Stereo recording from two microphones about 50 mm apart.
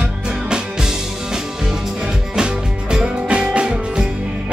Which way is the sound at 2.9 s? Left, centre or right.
Centre.